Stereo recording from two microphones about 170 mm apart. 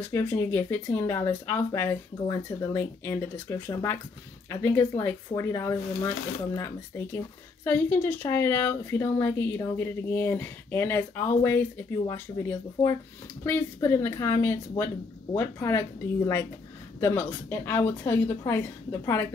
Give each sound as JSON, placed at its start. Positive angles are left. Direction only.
{"t": 0.1, "sound": "speech", "side_deg": 15}
{"t": 17.0, "sound": "speech", "side_deg": 10}